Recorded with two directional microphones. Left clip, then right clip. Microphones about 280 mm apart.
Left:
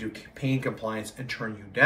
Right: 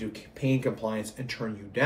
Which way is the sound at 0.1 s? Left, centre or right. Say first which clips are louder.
Right 2 dB; centre.